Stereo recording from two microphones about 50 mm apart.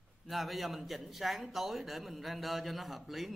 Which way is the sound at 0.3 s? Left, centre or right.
Centre.